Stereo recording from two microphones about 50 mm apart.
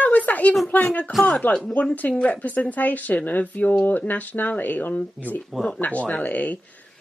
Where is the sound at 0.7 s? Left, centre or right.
Left.